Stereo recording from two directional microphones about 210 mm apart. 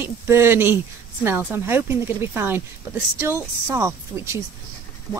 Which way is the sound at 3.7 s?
15° right (ahead or behind).